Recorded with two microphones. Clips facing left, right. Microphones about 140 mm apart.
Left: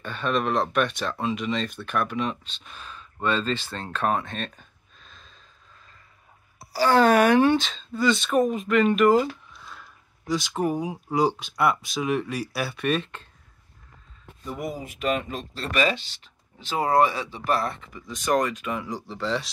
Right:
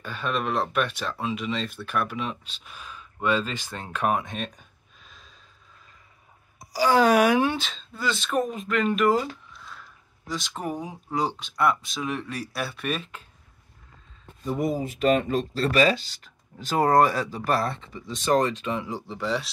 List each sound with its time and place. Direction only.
0.0 s speech: 5° right (ahead or behind)
6.6 s speech: 10° right (ahead or behind)
14.4 s speech: 30° right (ahead or behind)
19.2 s speech: 5° right (ahead or behind)